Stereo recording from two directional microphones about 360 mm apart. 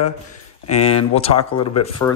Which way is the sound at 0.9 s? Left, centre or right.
Centre.